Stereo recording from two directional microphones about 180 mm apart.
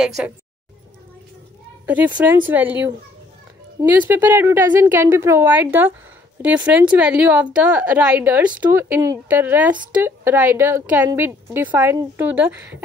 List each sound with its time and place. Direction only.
0.0 s a woman's voice: 5° right (ahead or behind)
1.9 s a woman's voice: 10° right (ahead or behind)